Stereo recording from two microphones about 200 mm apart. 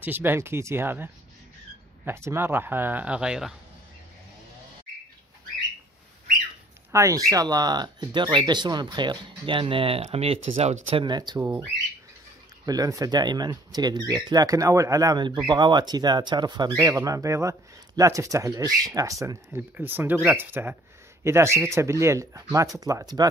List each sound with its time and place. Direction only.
0.0 s speech: 10° right (ahead or behind)
6.9 s speech: 15° right (ahead or behind)